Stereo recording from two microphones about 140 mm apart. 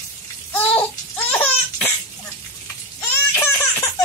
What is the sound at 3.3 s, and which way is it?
Baby laughter, 15° left (ahead or behind).